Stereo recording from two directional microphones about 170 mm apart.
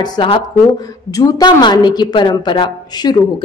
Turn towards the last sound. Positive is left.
turn(degrees=25)  # may be behind; listen again after turning